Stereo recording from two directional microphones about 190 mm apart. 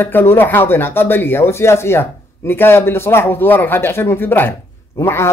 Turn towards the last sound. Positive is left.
turn(degrees=15)  # may be behind; listen again after turning